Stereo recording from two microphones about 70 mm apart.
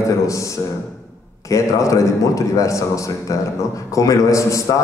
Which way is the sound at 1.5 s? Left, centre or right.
Left.